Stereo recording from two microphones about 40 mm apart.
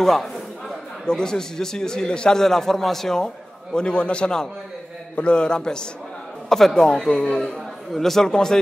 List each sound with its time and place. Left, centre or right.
0.0 s a sound: centre
1.0 s a man's voice: centre
2.4 s a man's voice: centre
3.7 s a man's voice: left
7.9 s a man's voice: centre